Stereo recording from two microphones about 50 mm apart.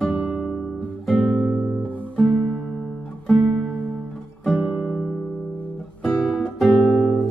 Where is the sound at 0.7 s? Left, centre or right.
Centre.